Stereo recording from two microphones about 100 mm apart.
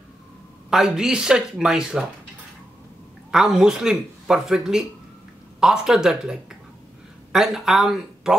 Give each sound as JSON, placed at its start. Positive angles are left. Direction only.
{"t": 0.7, "sound": "speech", "side_deg": -5}
{"t": 3.3, "sound": "speech", "side_deg": -5}
{"t": 7.3, "sound": "speech", "side_deg": -5}